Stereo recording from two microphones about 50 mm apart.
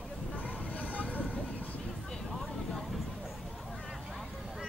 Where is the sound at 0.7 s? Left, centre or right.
Left.